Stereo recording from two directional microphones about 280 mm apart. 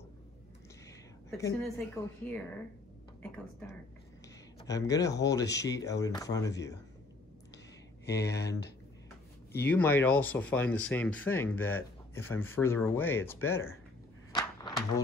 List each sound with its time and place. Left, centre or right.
1.3 s speech: centre
8.0 s speech: left
9.6 s speech: centre